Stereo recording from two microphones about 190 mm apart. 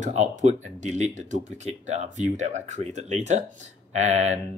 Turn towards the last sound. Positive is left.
turn(degrees=-35)  # may be behind; listen again after turning